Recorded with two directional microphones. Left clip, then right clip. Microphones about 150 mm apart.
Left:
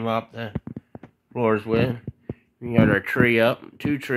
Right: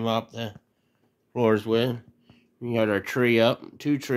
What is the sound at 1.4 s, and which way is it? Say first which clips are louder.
Speech: left 1 dB; 25° right (ahead or behind).